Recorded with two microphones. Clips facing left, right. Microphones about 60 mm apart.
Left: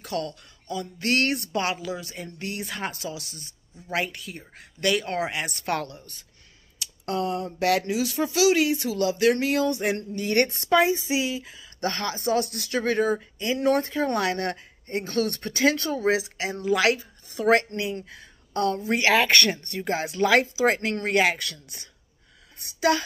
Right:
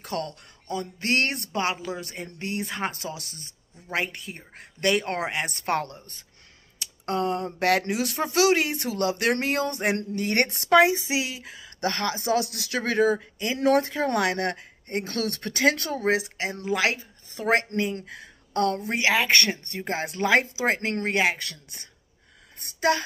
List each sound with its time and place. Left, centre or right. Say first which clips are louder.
0.0 s speech: left 1 dB; right
2.0 s speech: right 1 dB; right
2.3 s speech: right 3 dB; right
3.0 s speech: left 1 dB; right
12.3 s speech: left 2 dB; right
13.9 s speech: even; right
15.1 s speech: left 5 dB; right
16.0 s speech: left 1 dB; right
16.6 s speech: left 4 dB; right
18.0 s speech: right 4 dB; right
18.9 s speech: left 2 dB; centre
21.5 s speech: left 2 dB; right
22.6 s a sound: left 1 dB; right